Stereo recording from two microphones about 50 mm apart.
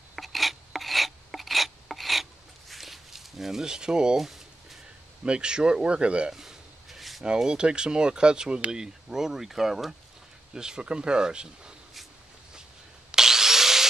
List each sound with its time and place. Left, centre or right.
0.1 s filing: centre
2.7 s walk: centre
4.2 s a sound: centre
5.2 s speech: centre
6.3 s a sound: centre
7.3 s speech: centre
13.1 s wood: centre